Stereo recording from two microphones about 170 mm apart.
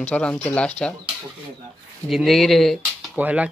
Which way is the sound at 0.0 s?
10° left (ahead or behind).